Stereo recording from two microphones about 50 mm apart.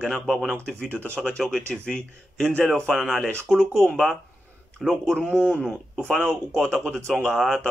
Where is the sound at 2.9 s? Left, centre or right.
Centre.